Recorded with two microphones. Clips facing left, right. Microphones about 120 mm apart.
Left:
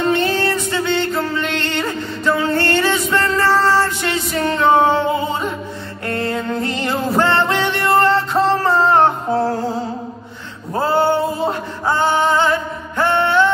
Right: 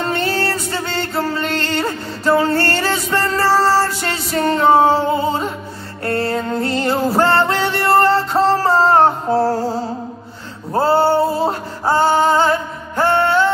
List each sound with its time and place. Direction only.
0.3 s music: 35° right (ahead or behind)
10.7 s music: 35° right (ahead or behind)